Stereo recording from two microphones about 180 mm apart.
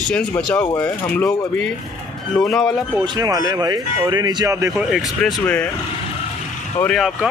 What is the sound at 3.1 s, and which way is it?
Speech, 20° right (ahead or behind).